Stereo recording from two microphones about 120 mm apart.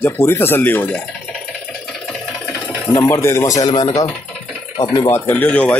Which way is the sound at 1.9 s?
5° left (ahead or behind).